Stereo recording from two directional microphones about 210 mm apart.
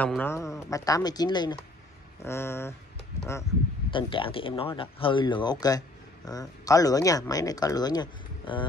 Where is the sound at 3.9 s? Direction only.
25° left (ahead or behind).